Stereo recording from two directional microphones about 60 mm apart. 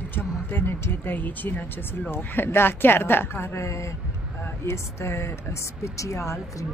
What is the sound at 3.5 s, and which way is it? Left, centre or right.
Speech, left.